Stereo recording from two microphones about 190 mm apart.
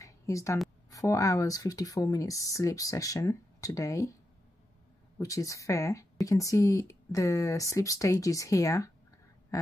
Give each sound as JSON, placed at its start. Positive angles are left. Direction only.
{"t": 0.0, "sound": "a sound", "side_deg": 15}
{"t": 0.8, "sound": "speech", "side_deg": 15}
{"t": 5.2, "sound": "speech", "side_deg": 15}